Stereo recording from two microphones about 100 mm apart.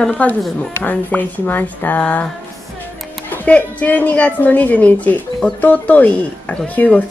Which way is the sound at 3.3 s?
15° left (ahead or behind).